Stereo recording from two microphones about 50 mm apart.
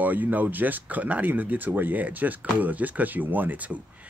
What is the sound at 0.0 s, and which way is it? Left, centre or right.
Speech, right.